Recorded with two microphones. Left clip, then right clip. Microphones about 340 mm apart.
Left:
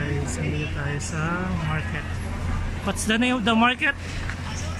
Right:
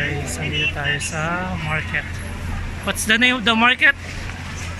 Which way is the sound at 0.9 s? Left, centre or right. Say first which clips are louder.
Right 5 dB; centre.